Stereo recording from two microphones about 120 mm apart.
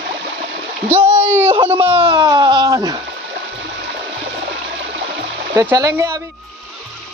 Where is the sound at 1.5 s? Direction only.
45° right (ahead or behind).